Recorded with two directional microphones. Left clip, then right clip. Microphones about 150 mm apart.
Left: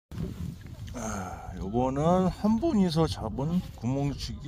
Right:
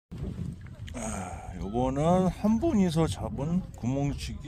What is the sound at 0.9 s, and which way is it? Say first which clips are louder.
Speech: left 1 dB; 10° left (ahead or behind).